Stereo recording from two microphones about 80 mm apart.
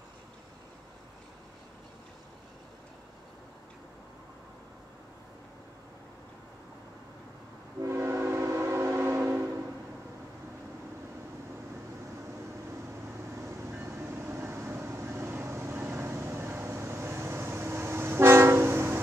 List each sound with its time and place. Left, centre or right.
7.8 s train: right
13.4 s vehicle: right